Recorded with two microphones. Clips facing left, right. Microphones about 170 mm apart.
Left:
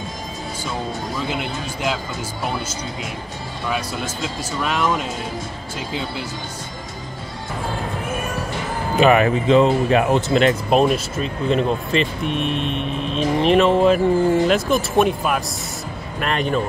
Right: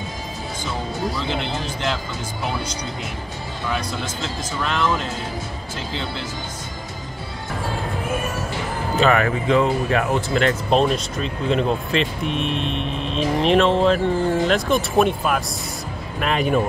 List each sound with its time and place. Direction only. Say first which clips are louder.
1.1 s speech: even; 10° left (ahead or behind)
3.7 s speech: left 1 dB; 10° left (ahead or behind)
9.0 s speech: left 4 dB; 20° left (ahead or behind)
10.7 s speech: left 2 dB; 5° left (ahead or behind)